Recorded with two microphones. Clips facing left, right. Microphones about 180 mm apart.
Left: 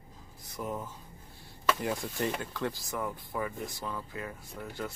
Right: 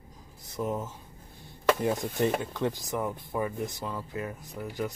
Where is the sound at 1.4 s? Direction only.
20° right (ahead or behind).